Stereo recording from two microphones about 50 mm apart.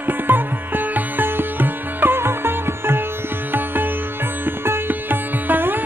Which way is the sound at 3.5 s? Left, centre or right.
Right.